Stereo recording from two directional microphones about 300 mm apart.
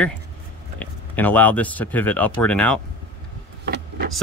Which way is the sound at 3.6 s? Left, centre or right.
Right.